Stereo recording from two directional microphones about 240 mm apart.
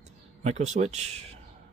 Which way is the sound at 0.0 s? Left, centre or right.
Right.